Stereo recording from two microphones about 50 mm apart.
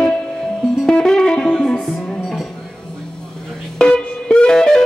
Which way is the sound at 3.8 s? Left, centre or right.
Centre.